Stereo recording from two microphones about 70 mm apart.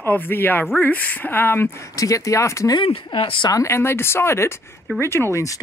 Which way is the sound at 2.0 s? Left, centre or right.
Left.